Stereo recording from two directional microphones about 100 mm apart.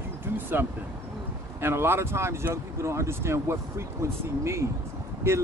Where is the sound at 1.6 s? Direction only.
25° right (ahead or behind).